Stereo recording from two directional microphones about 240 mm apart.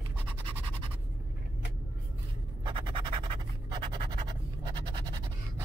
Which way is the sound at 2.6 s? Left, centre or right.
Right.